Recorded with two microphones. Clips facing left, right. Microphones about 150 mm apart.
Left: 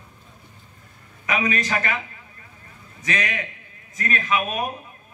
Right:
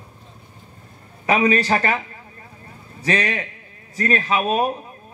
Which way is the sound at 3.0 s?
35° right (ahead or behind).